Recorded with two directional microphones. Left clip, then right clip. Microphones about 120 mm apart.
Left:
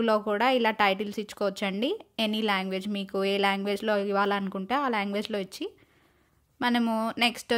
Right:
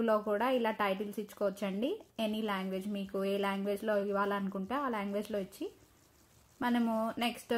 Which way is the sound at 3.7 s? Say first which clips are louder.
Left 6 dB; 20° left (ahead or behind).